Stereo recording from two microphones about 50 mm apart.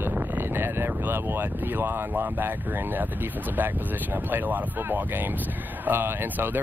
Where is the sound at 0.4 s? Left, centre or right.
Right.